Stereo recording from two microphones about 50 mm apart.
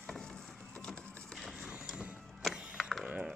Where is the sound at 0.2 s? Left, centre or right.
Centre.